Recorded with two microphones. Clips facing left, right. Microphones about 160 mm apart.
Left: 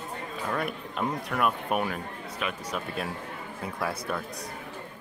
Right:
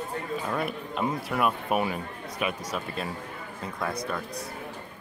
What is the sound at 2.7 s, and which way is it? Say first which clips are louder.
Speech: even; centre (ahead or behind).